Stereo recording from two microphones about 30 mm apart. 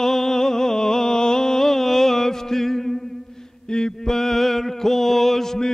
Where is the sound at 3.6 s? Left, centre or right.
Left.